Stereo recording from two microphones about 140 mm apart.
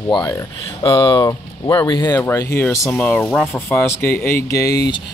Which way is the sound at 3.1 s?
Centre (ahead or behind).